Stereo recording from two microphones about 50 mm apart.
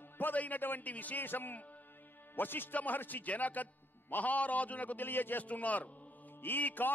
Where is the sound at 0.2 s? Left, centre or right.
Left.